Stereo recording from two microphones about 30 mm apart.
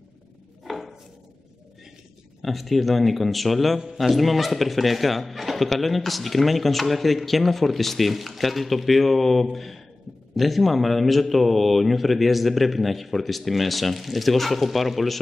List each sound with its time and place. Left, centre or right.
0.7 s a sound: centre
2.4 s speech: centre
3.8 s a man's voice: centre
4.1 s speech: centre